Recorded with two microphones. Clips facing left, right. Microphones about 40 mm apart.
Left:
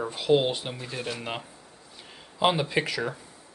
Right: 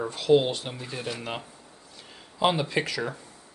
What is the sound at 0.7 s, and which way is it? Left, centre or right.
Speech, centre.